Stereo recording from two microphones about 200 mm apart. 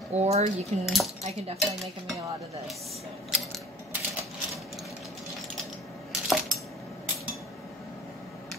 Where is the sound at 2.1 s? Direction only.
15° right (ahead or behind).